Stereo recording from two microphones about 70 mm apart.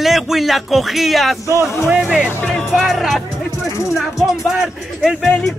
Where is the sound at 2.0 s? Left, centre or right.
Centre.